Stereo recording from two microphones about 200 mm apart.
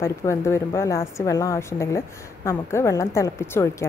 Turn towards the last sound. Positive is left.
turn(degrees=15)  # may be behind; listen again after turning